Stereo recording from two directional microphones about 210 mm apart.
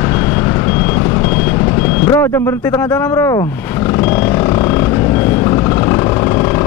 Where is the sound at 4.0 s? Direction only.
10° left (ahead or behind).